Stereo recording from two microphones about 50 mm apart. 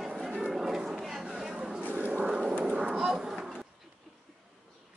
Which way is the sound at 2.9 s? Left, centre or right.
Centre.